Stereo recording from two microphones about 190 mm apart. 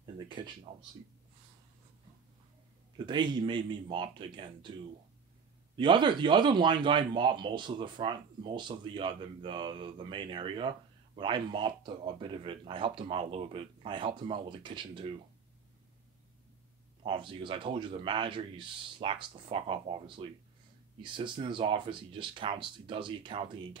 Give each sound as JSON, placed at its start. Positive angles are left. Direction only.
{"t": 0.0, "sound": "a sound", "side_deg": -25}
{"t": 0.7, "sound": "speech", "side_deg": -35}
{"t": 3.1, "sound": "a man's voice", "side_deg": -25}
{"t": 5.8, "sound": "a man's voice", "side_deg": -25}
{"t": 17.0, "sound": "a man's voice", "side_deg": -25}